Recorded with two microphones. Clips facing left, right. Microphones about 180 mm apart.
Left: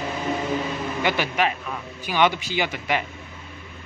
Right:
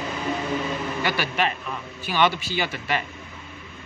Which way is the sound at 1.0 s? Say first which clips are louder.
Left 3 dB; 20° left (ahead or behind).